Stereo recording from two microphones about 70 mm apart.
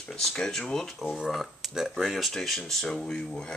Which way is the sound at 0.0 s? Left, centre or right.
Centre.